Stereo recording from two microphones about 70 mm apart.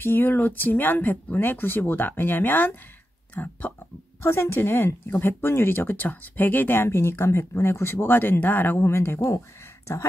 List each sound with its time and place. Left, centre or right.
0.0 s speech: left
4.2 s speech: left